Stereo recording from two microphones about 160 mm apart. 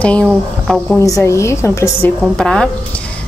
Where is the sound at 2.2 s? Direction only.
5° left (ahead or behind).